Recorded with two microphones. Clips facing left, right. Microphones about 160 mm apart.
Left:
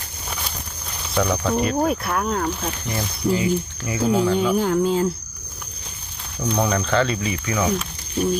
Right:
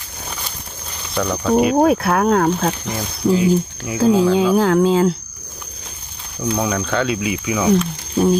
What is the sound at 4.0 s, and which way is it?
Speech, 90° right.